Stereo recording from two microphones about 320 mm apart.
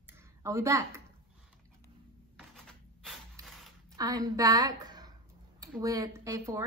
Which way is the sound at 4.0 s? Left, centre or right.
Centre.